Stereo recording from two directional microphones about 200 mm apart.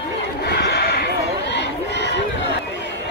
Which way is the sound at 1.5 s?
60° left (ahead or behind).